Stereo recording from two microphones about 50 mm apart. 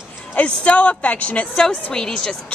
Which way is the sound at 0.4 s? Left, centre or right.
Left.